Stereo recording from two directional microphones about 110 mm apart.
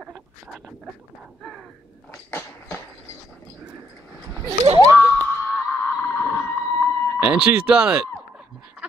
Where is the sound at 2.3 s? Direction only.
20° left (ahead or behind).